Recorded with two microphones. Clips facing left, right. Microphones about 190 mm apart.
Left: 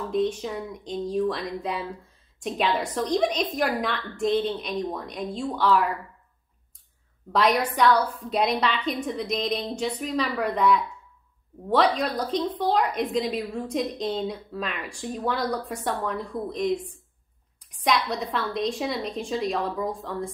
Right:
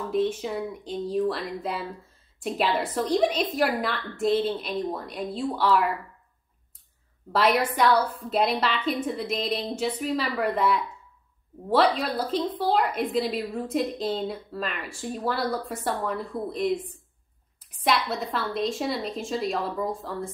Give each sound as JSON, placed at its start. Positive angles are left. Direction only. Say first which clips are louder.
{"t": 0.1, "sound": "a woman's voice", "louder": "even", "side_deg": -5}
{"t": 7.3, "sound": "a woman's voice", "louder": "even", "side_deg": -5}